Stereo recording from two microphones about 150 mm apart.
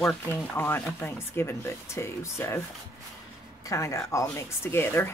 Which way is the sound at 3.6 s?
20° left (ahead or behind).